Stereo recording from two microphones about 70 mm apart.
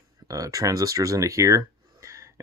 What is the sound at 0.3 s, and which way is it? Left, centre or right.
Speech, right.